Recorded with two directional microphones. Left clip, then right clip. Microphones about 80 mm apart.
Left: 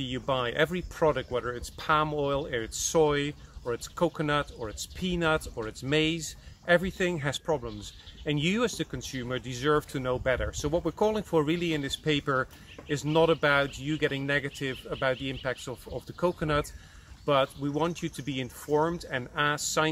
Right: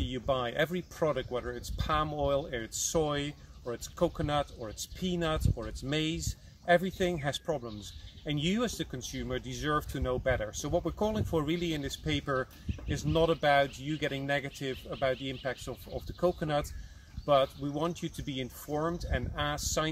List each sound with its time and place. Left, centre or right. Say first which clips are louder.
0.0 s speech: left 2 dB; centre